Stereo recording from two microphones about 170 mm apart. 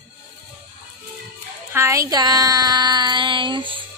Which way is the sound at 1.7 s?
20° right (ahead or behind).